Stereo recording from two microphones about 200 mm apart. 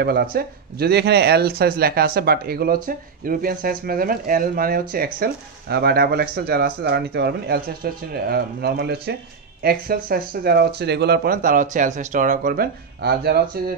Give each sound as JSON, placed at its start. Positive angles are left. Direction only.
{"t": 0.0, "sound": "speech", "side_deg": -50}